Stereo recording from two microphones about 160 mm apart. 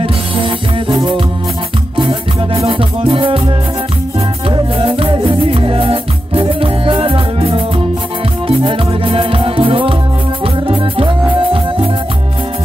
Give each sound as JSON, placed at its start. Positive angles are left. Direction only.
{"t": 0.0, "sound": "music", "side_deg": -35}
{"t": 4.5, "sound": "music", "side_deg": -35}